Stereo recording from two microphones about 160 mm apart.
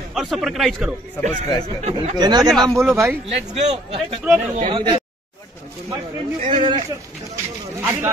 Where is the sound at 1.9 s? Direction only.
25° right (ahead or behind).